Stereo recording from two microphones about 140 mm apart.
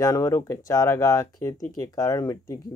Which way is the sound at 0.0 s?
25° left (ahead or behind).